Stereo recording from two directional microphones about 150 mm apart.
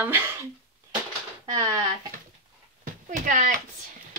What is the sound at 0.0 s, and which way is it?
Speech, 10° right (ahead or behind).